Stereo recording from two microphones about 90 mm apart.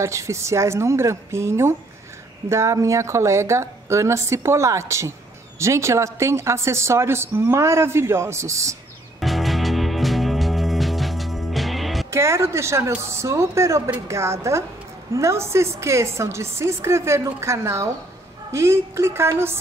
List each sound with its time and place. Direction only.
0.0 s speech: 35° right (ahead or behind)
9.2 s music: centre (ahead or behind)
12.1 s speech: 30° right (ahead or behind)